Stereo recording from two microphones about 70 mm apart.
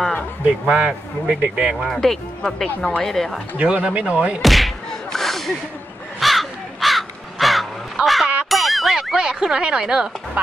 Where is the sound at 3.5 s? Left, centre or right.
Centre.